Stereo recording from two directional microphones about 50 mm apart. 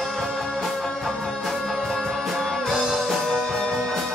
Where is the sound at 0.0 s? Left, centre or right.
Centre.